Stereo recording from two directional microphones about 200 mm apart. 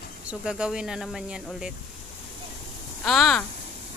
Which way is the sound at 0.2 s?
5° right (ahead or behind).